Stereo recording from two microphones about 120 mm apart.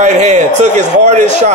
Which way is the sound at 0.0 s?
75° right (ahead or behind).